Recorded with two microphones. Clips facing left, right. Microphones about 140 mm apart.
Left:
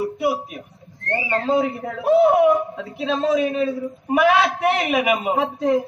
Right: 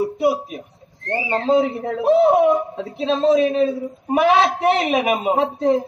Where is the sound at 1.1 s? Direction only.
30° right (ahead or behind).